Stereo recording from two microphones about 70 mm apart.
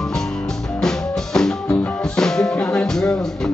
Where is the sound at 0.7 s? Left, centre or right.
Centre.